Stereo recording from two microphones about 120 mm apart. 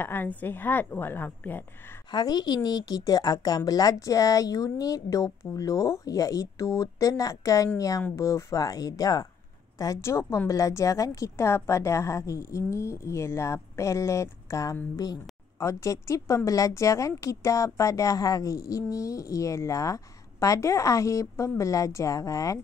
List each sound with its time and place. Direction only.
0.0 s a woman's voice: 15° left (ahead or behind)
2.0 s a woman's voice: 35° left (ahead or behind)